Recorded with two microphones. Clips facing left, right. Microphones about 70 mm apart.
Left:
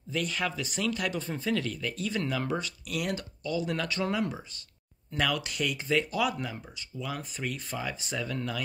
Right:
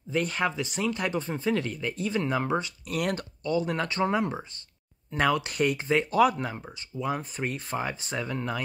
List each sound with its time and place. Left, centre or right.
0.1 s speech: right
3.0 s speech: right
3.4 s speech: right